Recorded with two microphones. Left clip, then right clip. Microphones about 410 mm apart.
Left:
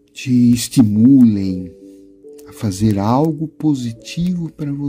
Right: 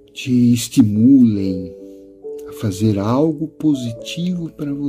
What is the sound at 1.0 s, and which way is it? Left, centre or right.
Speech, centre.